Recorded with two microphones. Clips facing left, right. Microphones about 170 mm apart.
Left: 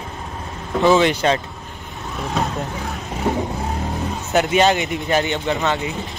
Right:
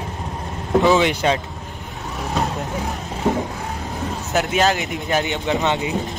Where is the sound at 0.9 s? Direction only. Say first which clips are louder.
Left 1 dB; 10° right (ahead or behind).